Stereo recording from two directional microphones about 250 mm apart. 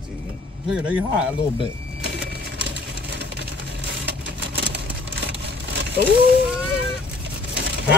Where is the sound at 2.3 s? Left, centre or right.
Right.